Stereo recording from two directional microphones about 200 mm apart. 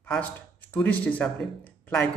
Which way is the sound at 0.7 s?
10° left (ahead or behind).